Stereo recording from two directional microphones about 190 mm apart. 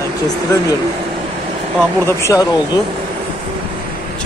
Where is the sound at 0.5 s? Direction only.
15° left (ahead or behind).